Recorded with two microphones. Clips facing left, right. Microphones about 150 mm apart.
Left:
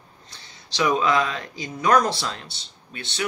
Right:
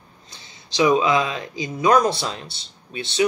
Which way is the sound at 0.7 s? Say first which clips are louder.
Right 3 dB; 15° right (ahead or behind).